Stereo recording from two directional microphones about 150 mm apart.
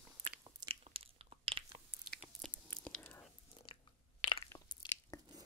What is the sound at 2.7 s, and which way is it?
Whispering, 10° left (ahead or behind).